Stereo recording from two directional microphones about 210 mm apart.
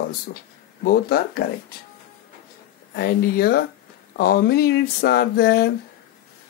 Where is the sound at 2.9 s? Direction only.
45° left (ahead or behind).